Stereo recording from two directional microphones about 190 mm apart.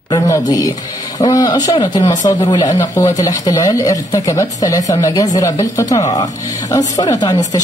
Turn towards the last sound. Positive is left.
turn(degrees=20)  # may be behind; listen again after turning